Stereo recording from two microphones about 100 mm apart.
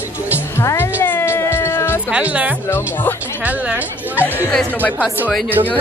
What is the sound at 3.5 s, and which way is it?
Speech, 15° right (ahead or behind).